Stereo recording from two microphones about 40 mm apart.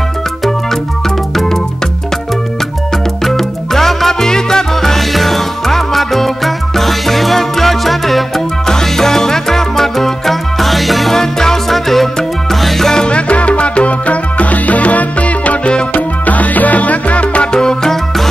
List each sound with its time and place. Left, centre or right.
3.3 s salsa music: centre
8.6 s music: centre
11.1 s music: centre
13.0 s music: left
17.5 s music: centre